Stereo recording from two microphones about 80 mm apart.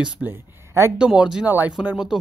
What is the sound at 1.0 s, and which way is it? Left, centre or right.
Speech, centre.